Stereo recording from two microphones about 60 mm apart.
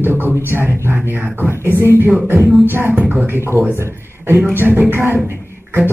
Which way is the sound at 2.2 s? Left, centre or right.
Right.